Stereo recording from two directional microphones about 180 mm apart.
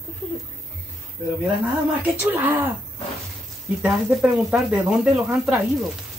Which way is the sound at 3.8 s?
Centre (ahead or behind).